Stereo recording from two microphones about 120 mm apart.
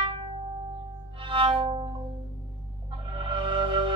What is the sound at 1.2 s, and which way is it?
Music, 45° right (ahead or behind).